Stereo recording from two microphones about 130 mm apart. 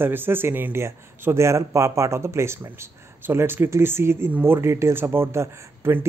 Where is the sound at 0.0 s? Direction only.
15° right (ahead or behind).